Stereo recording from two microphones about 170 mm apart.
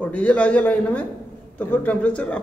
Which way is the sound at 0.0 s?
10° left (ahead or behind).